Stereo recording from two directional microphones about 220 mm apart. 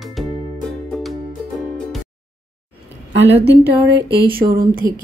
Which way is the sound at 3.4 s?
50° right (ahead or behind).